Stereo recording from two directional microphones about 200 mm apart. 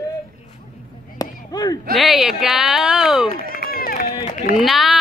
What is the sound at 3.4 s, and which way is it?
Run, 45° left (ahead or behind).